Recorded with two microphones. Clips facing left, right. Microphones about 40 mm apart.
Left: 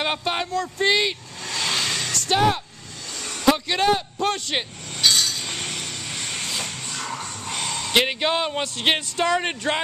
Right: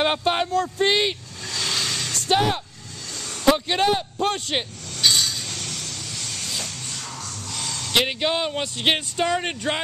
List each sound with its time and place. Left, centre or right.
0.0 s speech: centre
1.5 s vehicle: left
2.2 s speech: centre
5.0 s chink: centre
5.4 s vehicle: left
7.9 s speech: centre